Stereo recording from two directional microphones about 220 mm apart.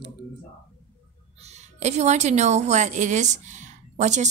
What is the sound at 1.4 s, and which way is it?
A woman's voice, 30° right (ahead or behind).